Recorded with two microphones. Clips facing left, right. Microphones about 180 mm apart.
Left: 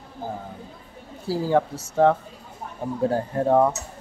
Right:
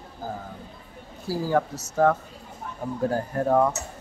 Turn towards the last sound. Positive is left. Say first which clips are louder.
# left 2 dB
turn(degrees=25)  # may be behind; listen again after turning